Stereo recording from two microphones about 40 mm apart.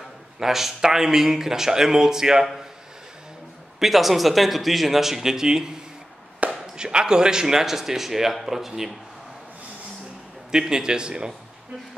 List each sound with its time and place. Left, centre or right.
0.4 s speech: centre
3.8 s speech: centre
10.5 s speech: centre